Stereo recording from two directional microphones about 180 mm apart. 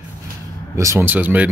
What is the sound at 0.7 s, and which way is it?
Speech, 15° right (ahead or behind).